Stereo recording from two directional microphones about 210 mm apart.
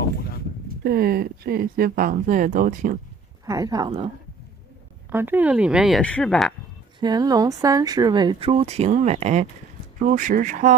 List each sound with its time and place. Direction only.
0.8 s speech: 50° right (ahead or behind)
3.4 s speech: 15° right (ahead or behind)
5.1 s speech: 10° right (ahead or behind)
7.0 s speech: 20° right (ahead or behind); by 10.7 s 40° right (ahead or behind)